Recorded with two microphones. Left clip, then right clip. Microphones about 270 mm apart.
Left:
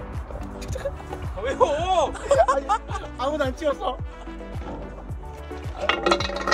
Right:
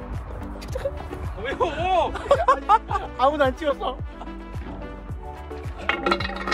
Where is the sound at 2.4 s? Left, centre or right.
Centre.